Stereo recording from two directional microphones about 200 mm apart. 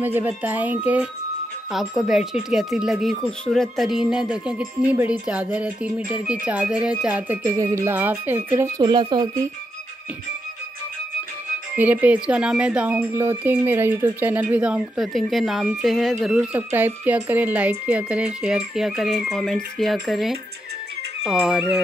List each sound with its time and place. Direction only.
0.0 s speech: 10° right (ahead or behind)
11.7 s speech: 10° right (ahead or behind)